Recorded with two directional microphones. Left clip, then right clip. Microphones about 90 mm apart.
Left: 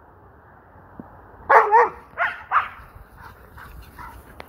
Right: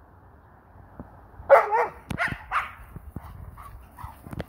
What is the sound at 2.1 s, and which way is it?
Dog, centre (ahead or behind).